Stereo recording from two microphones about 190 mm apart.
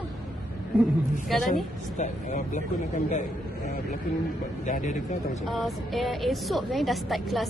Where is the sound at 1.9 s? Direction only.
40° left (ahead or behind).